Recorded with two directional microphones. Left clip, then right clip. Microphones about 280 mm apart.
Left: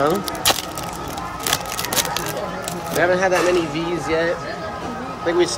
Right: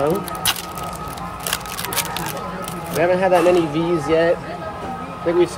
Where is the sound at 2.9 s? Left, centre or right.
Centre.